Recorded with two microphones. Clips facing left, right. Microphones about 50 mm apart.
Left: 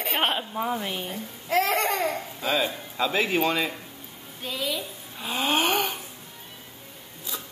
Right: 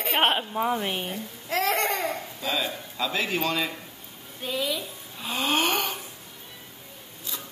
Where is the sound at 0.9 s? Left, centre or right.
Right.